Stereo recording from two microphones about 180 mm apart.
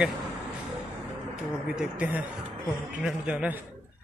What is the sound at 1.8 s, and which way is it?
A man's voice, 10° right (ahead or behind).